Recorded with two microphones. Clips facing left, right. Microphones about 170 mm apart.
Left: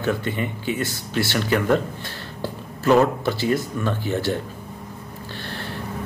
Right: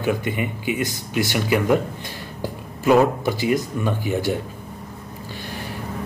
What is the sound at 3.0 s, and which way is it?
Speech, 15° right (ahead or behind).